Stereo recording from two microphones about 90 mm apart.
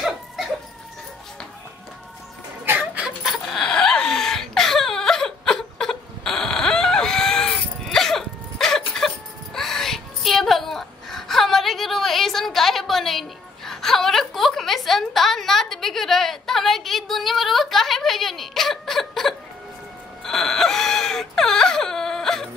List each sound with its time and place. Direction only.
2.6 s chicken: 20° right (ahead or behind)
3.3 s wail: centre (ahead or behind)
20.2 s whimper: 5° left (ahead or behind)